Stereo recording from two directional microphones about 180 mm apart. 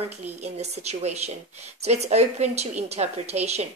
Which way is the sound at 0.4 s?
35° right (ahead or behind).